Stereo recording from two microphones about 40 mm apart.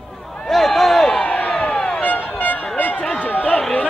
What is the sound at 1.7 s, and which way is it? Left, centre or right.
Music, centre.